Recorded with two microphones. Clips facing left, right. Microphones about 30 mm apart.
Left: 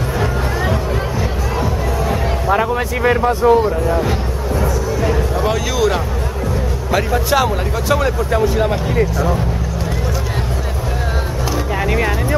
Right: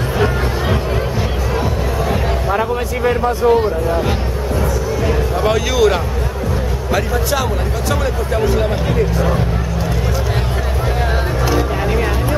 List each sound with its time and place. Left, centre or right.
1.6 s music: centre
2.5 s speech: centre
3.4 s speech: centre
5.0 s a sound: centre
7.0 s speech: centre